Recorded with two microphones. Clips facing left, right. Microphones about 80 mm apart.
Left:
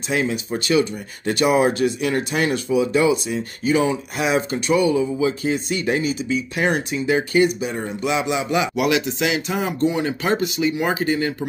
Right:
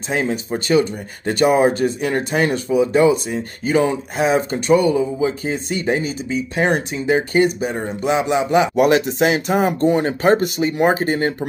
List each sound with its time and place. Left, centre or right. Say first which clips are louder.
0.1 s speech: right 1 dB; right